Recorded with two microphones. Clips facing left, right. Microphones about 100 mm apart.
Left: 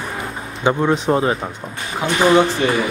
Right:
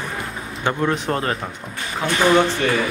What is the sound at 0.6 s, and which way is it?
Speech, 15° left (ahead or behind).